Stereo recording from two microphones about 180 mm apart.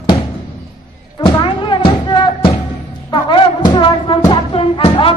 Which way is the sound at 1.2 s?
25° left (ahead or behind).